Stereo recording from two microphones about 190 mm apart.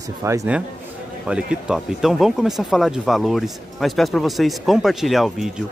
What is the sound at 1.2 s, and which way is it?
Speech, 5° right (ahead or behind).